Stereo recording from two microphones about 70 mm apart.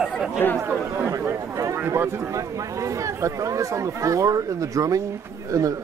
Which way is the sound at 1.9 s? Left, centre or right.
Right.